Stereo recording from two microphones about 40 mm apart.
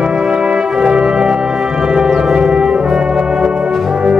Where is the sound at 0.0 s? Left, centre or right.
Centre.